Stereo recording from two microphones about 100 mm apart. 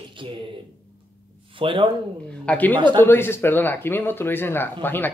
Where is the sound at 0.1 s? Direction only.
60° right (ahead or behind).